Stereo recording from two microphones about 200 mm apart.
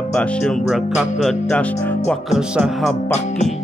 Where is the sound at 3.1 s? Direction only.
35° left (ahead or behind).